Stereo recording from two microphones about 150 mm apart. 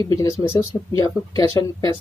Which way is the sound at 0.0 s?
20° left (ahead or behind).